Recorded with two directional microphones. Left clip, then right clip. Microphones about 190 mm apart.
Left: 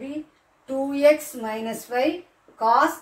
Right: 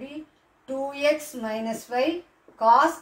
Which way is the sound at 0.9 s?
15° left (ahead or behind).